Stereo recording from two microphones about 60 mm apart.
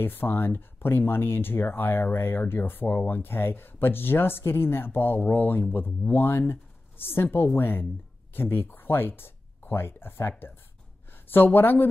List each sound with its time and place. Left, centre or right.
0.0 s speech: left